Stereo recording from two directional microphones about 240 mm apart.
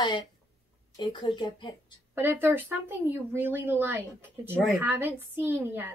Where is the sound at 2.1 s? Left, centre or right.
Centre.